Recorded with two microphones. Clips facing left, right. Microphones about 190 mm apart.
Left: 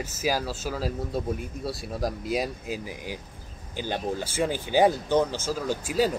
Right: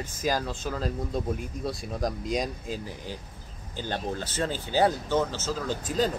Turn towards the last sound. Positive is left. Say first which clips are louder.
# left 2 dB
turn(degrees=10)  # may be behind; listen again after turning